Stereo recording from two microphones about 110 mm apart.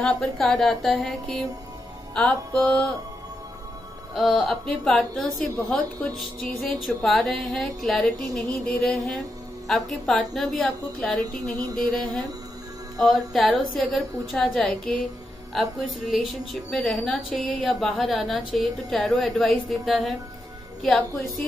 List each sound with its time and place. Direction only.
0.0 s speech: centre (ahead or behind)
2.1 s music: 10° left (ahead or behind)
4.1 s speech: centre (ahead or behind)